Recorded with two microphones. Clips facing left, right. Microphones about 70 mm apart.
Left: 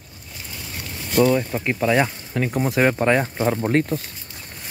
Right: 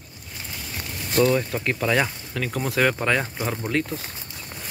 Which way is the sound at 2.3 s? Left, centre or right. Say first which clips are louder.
Left 5 dB; left.